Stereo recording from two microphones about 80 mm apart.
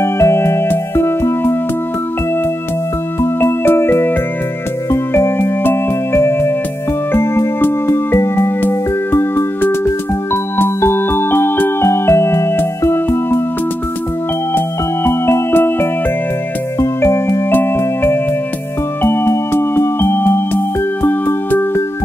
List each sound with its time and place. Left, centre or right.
0.0 s music: left
3.2 s music: left
15.0 s music: left
16.8 s music: left
17.5 s music: left